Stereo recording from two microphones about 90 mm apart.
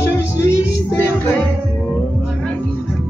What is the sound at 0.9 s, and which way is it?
Music, 25° left (ahead or behind).